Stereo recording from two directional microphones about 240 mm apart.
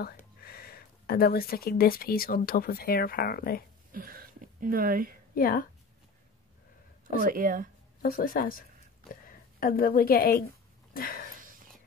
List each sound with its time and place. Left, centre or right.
0.4 s speech: left
3.9 s speech: right
5.3 s a woman's voice: left
7.2 s speech: right
8.0 s speech: left
11.4 s whispering: right